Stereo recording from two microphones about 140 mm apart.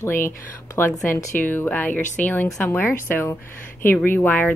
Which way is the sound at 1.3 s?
15° left (ahead or behind).